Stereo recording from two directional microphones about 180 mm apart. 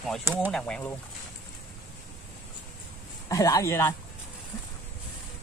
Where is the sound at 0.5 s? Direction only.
5° left (ahead or behind).